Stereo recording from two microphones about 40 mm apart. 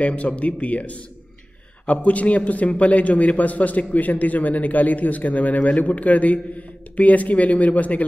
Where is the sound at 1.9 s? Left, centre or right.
Left.